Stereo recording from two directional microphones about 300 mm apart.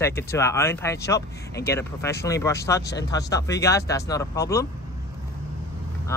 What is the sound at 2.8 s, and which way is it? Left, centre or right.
Speech, left.